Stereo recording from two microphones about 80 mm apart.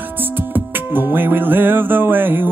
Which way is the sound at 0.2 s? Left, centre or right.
Right.